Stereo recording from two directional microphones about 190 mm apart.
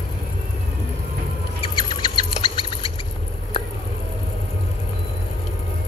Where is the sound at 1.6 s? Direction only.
25° left (ahead or behind).